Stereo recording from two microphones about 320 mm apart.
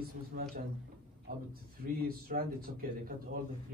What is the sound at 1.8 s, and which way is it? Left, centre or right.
Speech, right.